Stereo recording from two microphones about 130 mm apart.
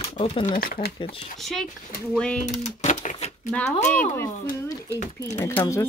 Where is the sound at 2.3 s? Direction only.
65° left (ahead or behind).